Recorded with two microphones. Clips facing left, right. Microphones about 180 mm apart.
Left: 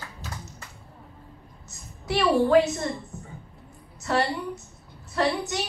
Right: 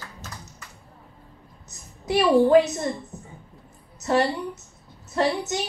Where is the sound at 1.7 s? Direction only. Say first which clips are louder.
Right 3 dB; 20° right (ahead or behind).